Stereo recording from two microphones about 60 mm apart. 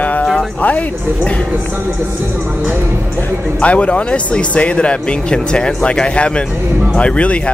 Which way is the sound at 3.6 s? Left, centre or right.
Left.